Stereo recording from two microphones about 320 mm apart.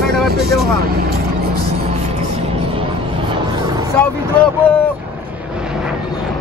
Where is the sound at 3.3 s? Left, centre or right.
Centre.